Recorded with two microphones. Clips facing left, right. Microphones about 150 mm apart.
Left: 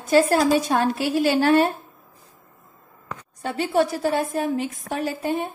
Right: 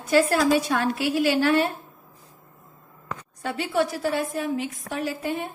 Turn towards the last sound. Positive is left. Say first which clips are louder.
# left 3 dB
turn(degrees=35)  # may be behind; listen again after turning